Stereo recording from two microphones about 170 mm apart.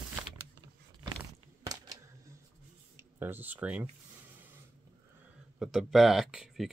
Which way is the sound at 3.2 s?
10° right (ahead or behind).